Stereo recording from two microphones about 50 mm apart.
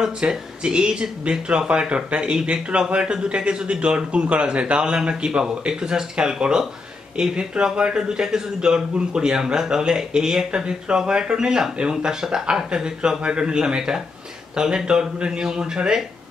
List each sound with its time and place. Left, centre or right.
0.0 s speech: centre